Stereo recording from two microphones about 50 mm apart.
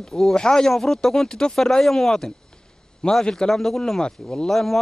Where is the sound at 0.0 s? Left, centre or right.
Centre.